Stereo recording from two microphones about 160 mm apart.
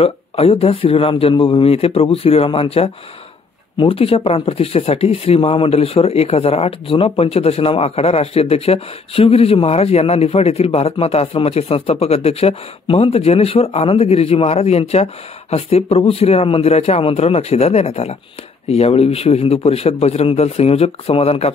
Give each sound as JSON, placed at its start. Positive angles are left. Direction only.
{"t": 0.0, "sound": "speech", "side_deg": 35}